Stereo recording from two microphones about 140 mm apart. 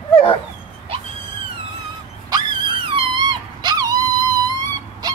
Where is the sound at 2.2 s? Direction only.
30° right (ahead or behind).